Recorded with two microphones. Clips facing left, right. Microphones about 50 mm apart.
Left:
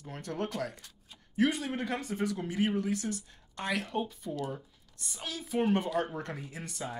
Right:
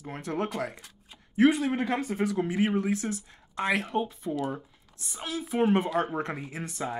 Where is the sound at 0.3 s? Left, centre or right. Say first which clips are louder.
Right 4 dB; right.